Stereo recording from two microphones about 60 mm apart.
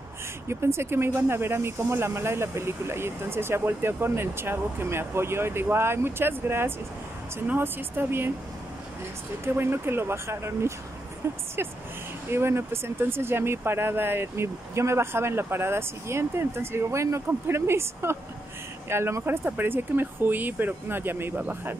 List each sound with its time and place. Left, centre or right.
0.5 s speech: right
9.4 s speech: right
17.3 s speech: right
19.2 s speech: right